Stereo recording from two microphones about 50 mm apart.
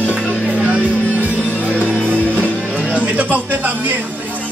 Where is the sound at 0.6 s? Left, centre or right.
Right.